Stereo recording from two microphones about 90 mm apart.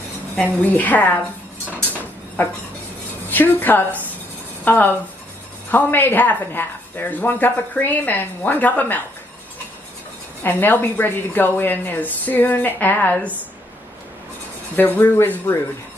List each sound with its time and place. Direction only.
0.4 s a woman's voice: 20° left (ahead or behind)
3.3 s a woman's voice: 20° left (ahead or behind)
10.4 s a woman's voice: 20° left (ahead or behind)
14.8 s a woman's voice: 20° left (ahead or behind)